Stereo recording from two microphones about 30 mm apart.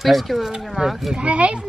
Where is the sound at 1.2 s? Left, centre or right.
Right.